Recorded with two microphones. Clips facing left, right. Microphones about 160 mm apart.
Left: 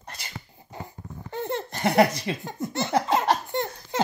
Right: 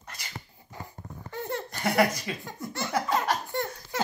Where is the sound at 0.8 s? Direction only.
25° left (ahead or behind).